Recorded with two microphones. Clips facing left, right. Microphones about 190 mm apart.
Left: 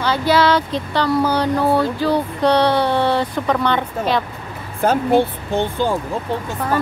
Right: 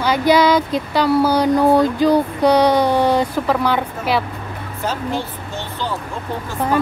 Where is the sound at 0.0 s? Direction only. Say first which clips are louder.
Right 2 dB; 15° right (ahead or behind).